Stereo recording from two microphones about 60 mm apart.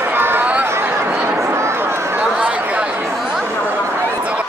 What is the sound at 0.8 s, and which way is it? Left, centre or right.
Chatter, right.